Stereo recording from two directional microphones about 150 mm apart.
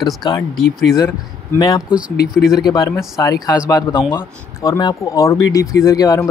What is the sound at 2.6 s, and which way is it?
Speech, 20° left (ahead or behind).